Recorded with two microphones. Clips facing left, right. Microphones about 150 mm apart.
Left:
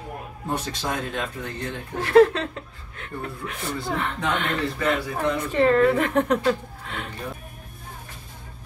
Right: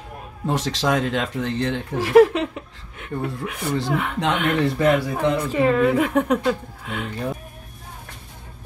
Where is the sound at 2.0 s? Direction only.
10° right (ahead or behind).